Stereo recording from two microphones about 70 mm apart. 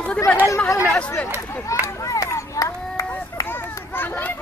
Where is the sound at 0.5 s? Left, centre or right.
Left.